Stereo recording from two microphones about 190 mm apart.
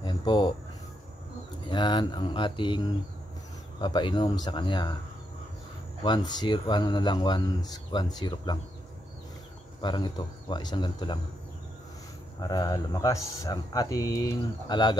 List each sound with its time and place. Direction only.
0.0 s a sound: 25° left (ahead or behind)
1.7 s speech: 25° left (ahead or behind)
6.0 s speech: 20° left (ahead or behind)
9.8 s speech: 25° left (ahead or behind)
12.4 s speech: 20° left (ahead or behind)